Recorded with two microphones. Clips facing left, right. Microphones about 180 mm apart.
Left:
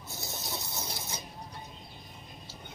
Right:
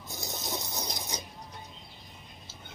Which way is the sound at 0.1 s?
20° right (ahead or behind).